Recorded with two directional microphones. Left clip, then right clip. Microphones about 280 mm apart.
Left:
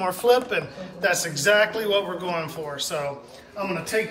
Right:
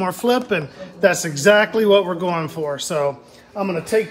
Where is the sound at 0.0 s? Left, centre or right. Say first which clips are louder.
Right 1 dB; right.